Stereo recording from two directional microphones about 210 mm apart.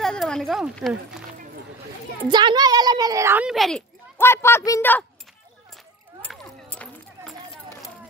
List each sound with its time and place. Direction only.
0.0 s speech: 5° left (ahead or behind)
2.2 s a woman's voice: 20° right (ahead or behind); by 3.8 s centre (ahead or behind)
4.2 s speech: 10° left (ahead or behind)
6.2 s a sound: 5° left (ahead or behind)